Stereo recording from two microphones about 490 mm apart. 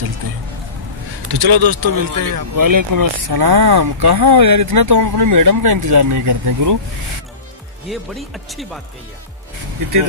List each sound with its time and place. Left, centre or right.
1.3 s speech: right
7.9 s speech: centre